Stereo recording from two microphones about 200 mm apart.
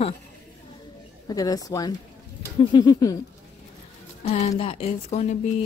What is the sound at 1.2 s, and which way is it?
Speech, 20° left (ahead or behind).